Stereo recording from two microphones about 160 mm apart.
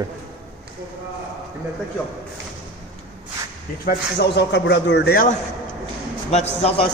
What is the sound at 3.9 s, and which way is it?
A man's voice, 90° left.